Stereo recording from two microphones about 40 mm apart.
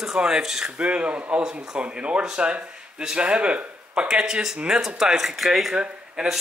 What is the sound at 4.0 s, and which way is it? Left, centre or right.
Speech, centre.